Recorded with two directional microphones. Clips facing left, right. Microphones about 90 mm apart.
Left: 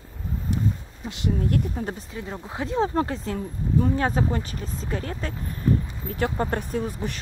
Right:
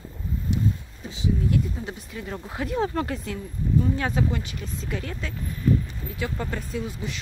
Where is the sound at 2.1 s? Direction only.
20° left (ahead or behind).